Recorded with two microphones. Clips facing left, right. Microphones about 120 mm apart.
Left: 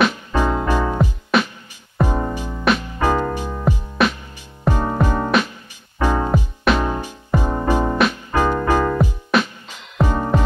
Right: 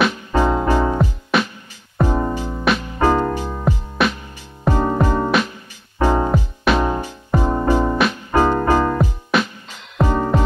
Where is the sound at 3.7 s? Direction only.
Centre (ahead or behind).